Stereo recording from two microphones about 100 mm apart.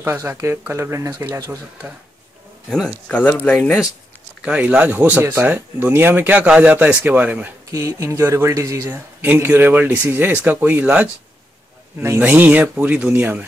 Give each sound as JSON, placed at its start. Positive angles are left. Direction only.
{"t": 0.0, "sound": "speech", "side_deg": -20}
{"t": 3.1, "sound": "speech", "side_deg": 15}
{"t": 4.5, "sound": "speech", "side_deg": -10}
{"t": 7.7, "sound": "speech", "side_deg": -30}
{"t": 9.2, "sound": "speech", "side_deg": -20}
{"t": 12.2, "sound": "speech", "side_deg": -15}